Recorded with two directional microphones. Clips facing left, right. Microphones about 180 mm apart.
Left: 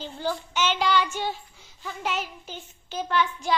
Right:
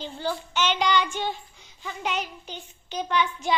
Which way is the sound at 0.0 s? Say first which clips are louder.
Even; 10° left (ahead or behind).